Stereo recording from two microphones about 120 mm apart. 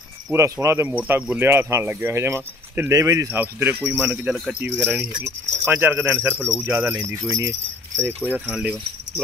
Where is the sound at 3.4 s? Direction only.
15° right (ahead or behind).